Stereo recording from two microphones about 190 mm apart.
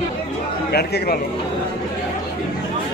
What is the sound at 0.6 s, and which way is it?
Speech, 55° left (ahead or behind).